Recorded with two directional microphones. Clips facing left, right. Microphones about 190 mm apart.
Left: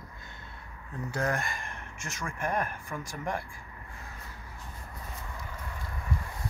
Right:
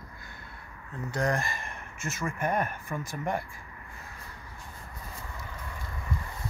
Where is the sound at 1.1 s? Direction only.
5° left (ahead or behind).